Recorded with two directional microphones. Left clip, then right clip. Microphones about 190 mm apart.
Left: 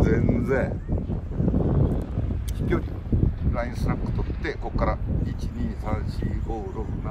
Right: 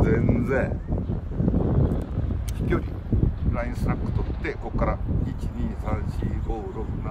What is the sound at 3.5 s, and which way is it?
Speech, 5° left (ahead or behind).